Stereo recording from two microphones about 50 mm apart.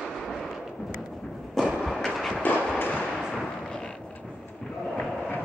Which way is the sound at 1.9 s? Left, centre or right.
Centre.